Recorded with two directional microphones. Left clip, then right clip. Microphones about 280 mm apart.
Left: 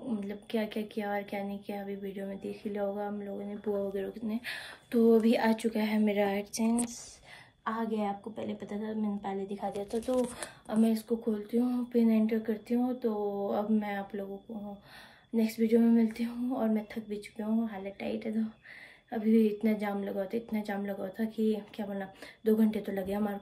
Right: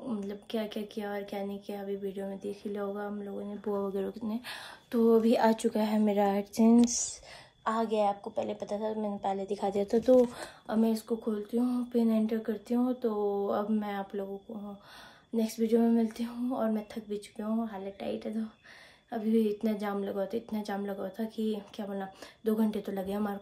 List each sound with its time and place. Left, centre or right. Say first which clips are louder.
0.3 s a woman's voice: left 2 dB; centre
6.7 s speech: right 8 dB; right
7.6 s a woman's voice: right 5 dB; centre; by 10.3 s right
10.3 s a woman's voice: right 1 dB; right
15.3 s a woman's voice: even; centre